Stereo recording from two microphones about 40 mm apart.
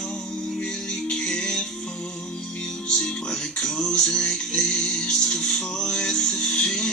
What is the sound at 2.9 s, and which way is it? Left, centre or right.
Music, centre.